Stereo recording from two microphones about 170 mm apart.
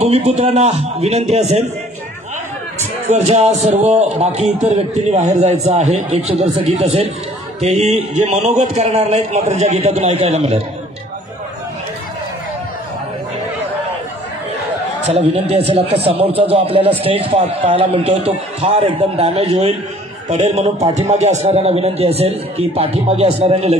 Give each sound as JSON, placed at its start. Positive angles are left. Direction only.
{"t": 0.0, "sound": "a man's voice", "side_deg": -40}
{"t": 2.8, "sound": "a man's voice", "side_deg": -40}
{"t": 15.0, "sound": "a man's voice", "side_deg": -35}